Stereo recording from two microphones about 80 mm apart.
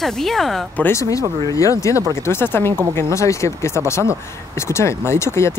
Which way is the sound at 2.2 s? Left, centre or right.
Left.